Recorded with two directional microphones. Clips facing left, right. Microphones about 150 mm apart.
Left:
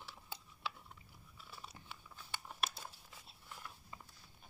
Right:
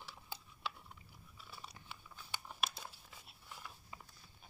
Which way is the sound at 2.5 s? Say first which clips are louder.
Even; centre (ahead or behind).